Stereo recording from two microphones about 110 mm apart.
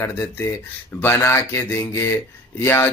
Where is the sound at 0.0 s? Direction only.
20° left (ahead or behind).